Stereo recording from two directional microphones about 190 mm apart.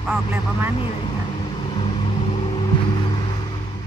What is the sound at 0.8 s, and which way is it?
Vehicle, 25° left (ahead or behind).